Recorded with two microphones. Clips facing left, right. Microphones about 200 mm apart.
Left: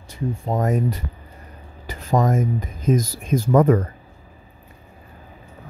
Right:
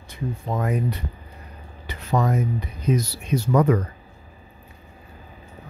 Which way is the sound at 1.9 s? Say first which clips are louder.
Left 3 dB; 45° left (ahead or behind).